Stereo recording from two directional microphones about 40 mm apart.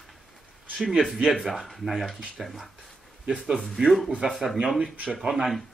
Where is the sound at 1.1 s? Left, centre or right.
Centre.